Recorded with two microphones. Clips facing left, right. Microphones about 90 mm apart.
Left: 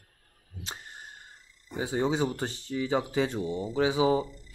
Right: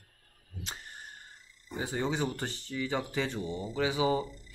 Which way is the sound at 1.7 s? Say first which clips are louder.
Left 4 dB; 15° left (ahead or behind).